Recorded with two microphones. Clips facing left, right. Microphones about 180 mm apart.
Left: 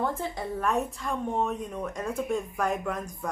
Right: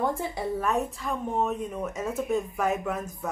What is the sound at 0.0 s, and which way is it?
A woman's voice, 15° right (ahead or behind).